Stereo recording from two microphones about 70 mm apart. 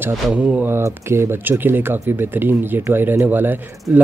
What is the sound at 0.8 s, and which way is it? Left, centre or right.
Speech, right.